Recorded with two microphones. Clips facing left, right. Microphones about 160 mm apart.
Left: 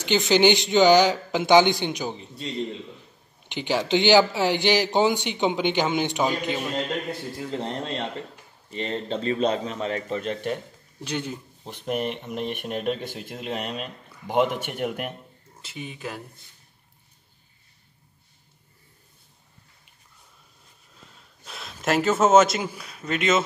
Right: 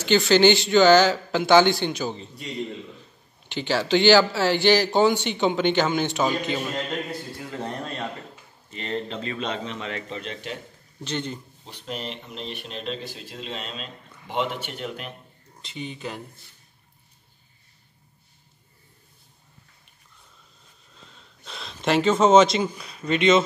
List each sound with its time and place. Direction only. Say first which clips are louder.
0.0 s speech: right 2 dB; 15° left (ahead or behind)
3.4 s speech: right 1 dB; 15° left (ahead or behind)
7.5 s a man's voice: left 2 dB; 25° left (ahead or behind); by 10.6 s 50° left (ahead or behind)
11.1 s speech: even; 10° left (ahead or behind)
11.6 s speech: left 7 dB; 50° left (ahead or behind)
15.6 s speech: right 1 dB; 5° left (ahead or behind)
21.5 s speech: right 1 dB; 5° left (ahead or behind)